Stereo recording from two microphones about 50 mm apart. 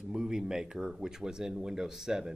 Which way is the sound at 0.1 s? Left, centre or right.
Centre.